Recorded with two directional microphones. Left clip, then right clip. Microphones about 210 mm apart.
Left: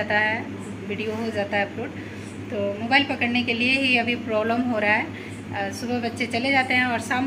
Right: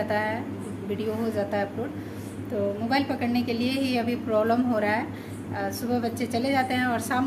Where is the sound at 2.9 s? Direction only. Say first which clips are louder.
Left 9 dB; 5° right (ahead or behind).